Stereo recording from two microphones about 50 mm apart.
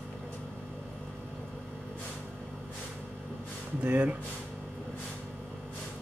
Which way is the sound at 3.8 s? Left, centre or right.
Right.